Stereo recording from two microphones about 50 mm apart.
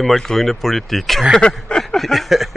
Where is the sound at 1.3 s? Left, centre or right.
Centre.